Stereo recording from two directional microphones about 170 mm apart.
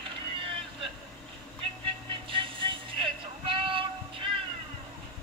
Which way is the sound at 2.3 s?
30° right (ahead or behind).